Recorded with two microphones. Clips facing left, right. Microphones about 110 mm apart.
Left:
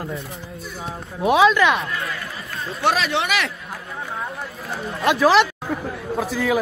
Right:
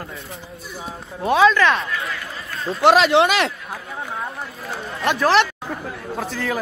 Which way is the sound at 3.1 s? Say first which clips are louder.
Right 6 dB; 35° right (ahead or behind).